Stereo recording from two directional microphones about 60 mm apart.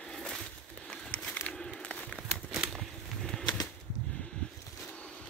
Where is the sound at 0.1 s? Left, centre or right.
Centre.